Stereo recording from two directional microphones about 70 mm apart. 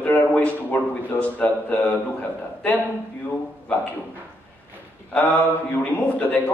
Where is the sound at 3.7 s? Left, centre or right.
Left.